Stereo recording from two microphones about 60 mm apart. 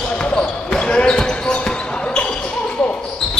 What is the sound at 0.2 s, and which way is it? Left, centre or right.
Basketball bounce, centre.